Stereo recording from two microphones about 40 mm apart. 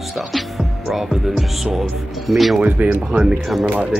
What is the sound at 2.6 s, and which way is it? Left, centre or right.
Speech, right.